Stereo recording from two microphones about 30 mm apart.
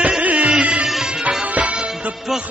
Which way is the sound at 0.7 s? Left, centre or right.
Right.